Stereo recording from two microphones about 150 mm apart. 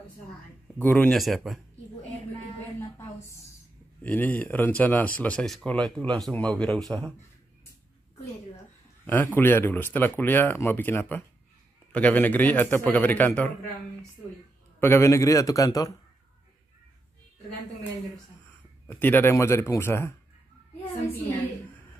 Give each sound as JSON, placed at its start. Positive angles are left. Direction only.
{"t": 0.7, "sound": "speech", "side_deg": 10}
{"t": 4.0, "sound": "speech", "side_deg": 10}
{"t": 9.0, "sound": "speech", "side_deg": 15}
{"t": 14.8, "sound": "a man's voice", "side_deg": 15}
{"t": 18.9, "sound": "speech", "side_deg": 15}